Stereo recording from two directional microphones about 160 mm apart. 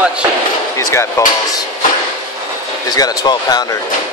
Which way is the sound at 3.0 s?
25° left (ahead or behind).